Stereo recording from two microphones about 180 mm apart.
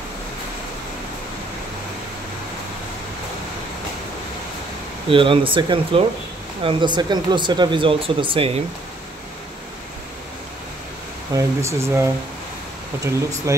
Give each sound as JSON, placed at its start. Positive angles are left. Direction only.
{"t": 5.1, "sound": "speech", "side_deg": -30}
{"t": 11.3, "sound": "speech", "side_deg": -15}
{"t": 13.5, "sound": "speech", "side_deg": -15}